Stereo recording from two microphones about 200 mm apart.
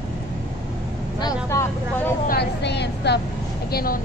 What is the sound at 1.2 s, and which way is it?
Vehicle, 15° left (ahead or behind).